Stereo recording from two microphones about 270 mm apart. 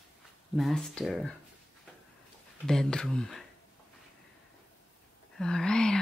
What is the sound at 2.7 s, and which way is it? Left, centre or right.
Speech, centre.